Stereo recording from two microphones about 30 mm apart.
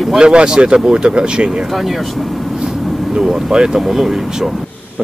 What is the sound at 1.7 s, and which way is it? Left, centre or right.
Speech, centre.